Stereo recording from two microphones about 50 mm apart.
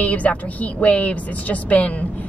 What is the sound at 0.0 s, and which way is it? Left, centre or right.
A woman's voice, left.